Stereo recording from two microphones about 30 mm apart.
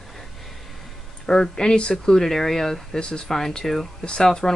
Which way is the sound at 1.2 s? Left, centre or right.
Left.